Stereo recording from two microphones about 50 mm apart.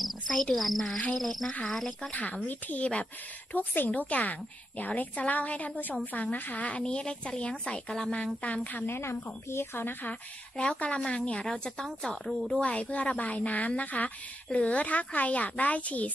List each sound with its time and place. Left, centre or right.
0.0 s a woman's voice: centre
2.1 s a woman's voice: left
3.5 s a woman's voice: left; by 8.2 s centre
8.8 s a woman's voice: left
10.6 s a woman's voice: left
11.5 s a woman's voice: centre
12.5 s a woman's voice: left